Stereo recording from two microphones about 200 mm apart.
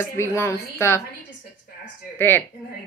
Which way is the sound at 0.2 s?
15° left (ahead or behind).